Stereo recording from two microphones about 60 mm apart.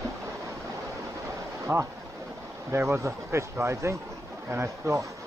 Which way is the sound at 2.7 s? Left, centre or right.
Right.